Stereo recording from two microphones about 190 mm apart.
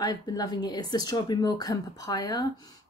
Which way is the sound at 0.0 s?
20° left (ahead or behind).